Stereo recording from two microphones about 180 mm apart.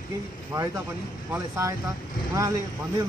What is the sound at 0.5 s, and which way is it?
Speech, 20° right (ahead or behind).